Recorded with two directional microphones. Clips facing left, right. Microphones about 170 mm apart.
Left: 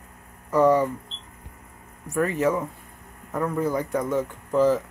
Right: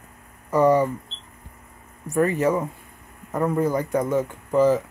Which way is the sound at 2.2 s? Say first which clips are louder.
Right 2 dB; centre (ahead or behind).